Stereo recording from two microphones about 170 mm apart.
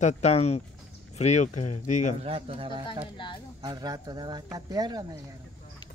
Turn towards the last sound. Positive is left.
turn(degrees=-25)  # may be behind; listen again after turning